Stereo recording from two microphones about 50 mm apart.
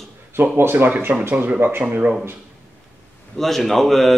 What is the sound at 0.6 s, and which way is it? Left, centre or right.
Speech, right.